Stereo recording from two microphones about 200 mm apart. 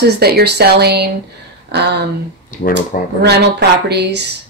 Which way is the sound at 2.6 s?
45° left (ahead or behind).